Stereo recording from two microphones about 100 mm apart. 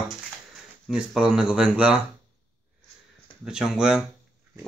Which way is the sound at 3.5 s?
5° right (ahead or behind).